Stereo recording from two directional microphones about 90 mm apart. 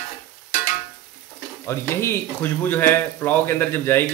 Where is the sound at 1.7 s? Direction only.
30° left (ahead or behind).